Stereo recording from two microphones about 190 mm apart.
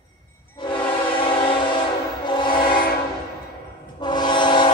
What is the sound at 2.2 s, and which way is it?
Train horn, 25° left (ahead or behind).